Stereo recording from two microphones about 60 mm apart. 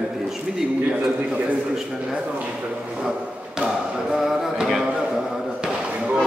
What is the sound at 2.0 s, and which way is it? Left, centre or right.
Speech, centre.